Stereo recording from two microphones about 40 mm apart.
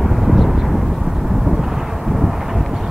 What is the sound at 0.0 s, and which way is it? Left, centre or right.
Vehicle, centre.